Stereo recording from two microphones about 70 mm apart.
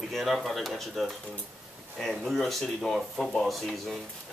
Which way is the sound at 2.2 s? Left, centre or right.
Centre.